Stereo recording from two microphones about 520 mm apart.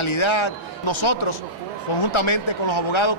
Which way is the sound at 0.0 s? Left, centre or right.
Left.